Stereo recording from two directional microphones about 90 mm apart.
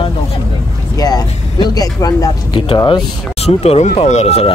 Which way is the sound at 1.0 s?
45° left (ahead or behind).